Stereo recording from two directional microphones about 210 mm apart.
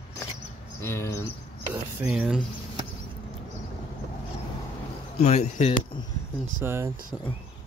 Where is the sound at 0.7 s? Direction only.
10° left (ahead or behind).